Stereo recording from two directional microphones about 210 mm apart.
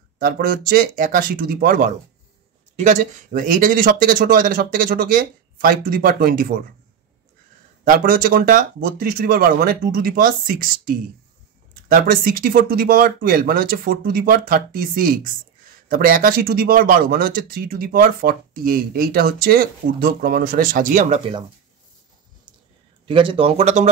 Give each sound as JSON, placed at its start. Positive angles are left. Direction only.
{"t": 0.2, "sound": "speech", "side_deg": -45}
{"t": 7.8, "sound": "speech", "side_deg": -40}
{"t": 23.0, "sound": "speech", "side_deg": -25}